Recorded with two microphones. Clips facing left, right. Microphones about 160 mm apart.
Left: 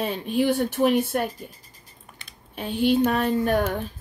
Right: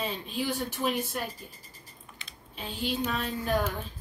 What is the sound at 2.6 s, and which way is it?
Speech, 55° left (ahead or behind).